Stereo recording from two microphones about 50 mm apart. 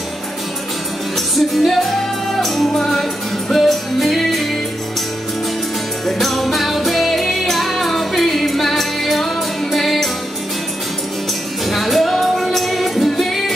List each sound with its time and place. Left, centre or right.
1.1 s music: centre
6.0 s music: centre
11.6 s music: centre